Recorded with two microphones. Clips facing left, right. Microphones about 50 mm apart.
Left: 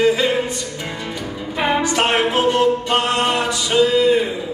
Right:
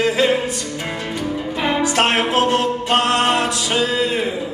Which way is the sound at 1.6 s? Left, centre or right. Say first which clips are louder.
Left 2 dB; centre.